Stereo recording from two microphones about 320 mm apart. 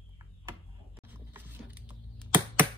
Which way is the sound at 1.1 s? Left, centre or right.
Centre.